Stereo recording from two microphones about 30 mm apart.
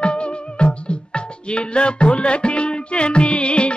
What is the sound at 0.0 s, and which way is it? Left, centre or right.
Music, left.